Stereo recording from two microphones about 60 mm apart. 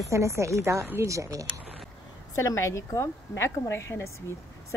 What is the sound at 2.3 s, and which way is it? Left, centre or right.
A woman's voice, left.